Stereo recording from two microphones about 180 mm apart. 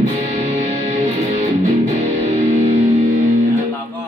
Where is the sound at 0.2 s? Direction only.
35° right (ahead or behind).